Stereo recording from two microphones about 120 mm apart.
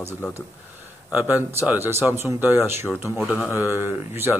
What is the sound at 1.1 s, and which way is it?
Speech, 15° right (ahead or behind).